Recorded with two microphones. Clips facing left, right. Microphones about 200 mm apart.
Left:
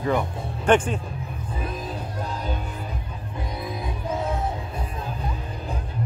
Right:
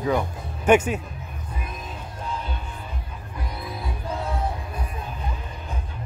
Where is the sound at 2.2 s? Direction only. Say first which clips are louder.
Left 1 dB; 40° left (ahead or behind).